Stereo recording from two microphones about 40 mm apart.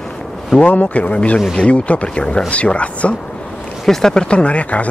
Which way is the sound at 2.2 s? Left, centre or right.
Left.